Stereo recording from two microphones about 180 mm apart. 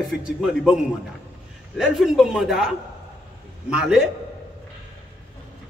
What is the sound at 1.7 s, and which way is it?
A man's voice, centre (ahead or behind).